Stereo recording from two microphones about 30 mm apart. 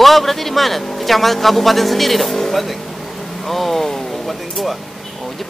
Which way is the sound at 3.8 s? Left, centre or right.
Centre.